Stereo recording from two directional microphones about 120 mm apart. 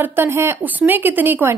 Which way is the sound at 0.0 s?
15° right (ahead or behind).